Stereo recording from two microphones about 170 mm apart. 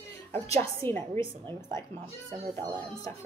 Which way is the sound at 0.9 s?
40° right (ahead or behind).